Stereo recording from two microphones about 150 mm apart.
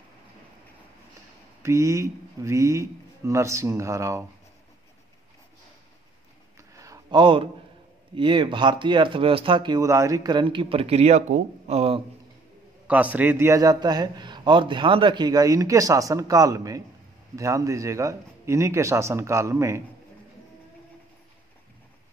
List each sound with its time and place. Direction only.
1.6 s a man's voice: 20° right (ahead or behind)
6.7 s a sound: 20° right (ahead or behind)
8.2 s speech: 35° right (ahead or behind)
12.8 s a man's voice: 10° right (ahead or behind)